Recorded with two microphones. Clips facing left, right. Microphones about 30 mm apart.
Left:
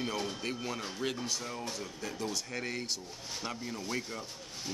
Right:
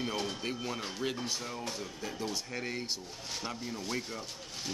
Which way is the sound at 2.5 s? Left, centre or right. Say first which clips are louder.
Even; centre.